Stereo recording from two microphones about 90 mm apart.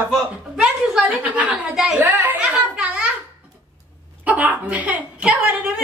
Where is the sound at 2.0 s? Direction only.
25° right (ahead or behind).